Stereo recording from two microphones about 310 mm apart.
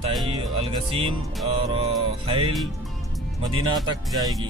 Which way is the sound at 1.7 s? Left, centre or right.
Centre.